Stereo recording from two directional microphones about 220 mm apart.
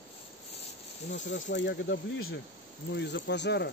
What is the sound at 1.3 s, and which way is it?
Speech, 55° left (ahead or behind).